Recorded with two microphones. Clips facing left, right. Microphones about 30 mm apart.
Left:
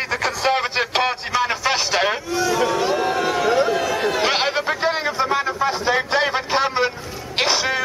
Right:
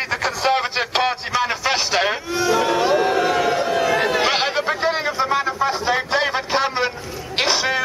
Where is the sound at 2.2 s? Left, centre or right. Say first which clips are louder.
Right 1 dB; centre.